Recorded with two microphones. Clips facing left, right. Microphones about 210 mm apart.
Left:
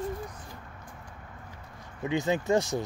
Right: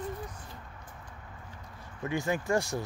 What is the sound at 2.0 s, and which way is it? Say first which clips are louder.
Speech: left 4 dB; 20° left (ahead or behind).